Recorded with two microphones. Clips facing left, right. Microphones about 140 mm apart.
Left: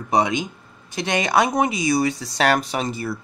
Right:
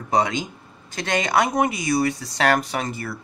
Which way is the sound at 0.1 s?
15° left (ahead or behind).